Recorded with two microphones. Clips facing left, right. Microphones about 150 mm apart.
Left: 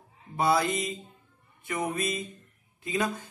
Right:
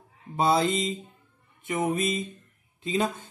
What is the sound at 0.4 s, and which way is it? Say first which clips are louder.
A man's voice: right 2 dB; 25° right (ahead or behind).